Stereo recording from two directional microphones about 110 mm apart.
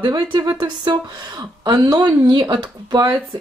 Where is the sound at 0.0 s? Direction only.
45° right (ahead or behind).